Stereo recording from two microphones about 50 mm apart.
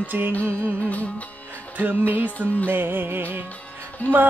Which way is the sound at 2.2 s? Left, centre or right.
Left.